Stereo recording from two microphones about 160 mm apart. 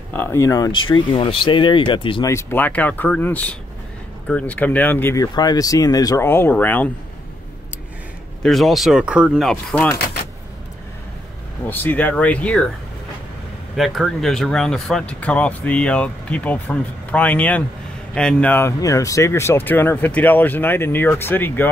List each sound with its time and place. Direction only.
0.1 s speech: 15° left (ahead or behind); by 2.2 s 30° left (ahead or behind)
2.2 s speech: 15° left (ahead or behind)
8.4 s speech: centre (ahead or behind)
11.7 s speech: 10° left (ahead or behind)
13.7 s speech: centre (ahead or behind)